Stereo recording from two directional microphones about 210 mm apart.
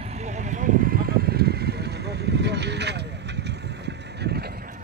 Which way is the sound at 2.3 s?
55° right (ahead or behind).